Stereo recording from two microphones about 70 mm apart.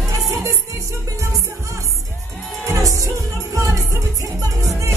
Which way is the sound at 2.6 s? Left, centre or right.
Right.